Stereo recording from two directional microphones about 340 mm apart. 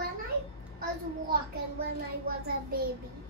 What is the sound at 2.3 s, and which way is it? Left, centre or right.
Speech, right.